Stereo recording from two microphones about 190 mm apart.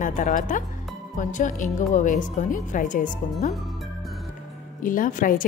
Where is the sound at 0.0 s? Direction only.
45° left (ahead or behind).